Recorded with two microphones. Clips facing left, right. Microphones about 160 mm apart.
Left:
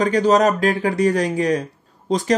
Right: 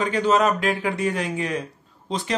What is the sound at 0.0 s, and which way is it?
Speech, 40° left (ahead or behind).